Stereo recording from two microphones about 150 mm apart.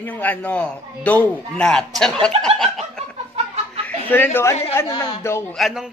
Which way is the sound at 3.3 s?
45° right (ahead or behind).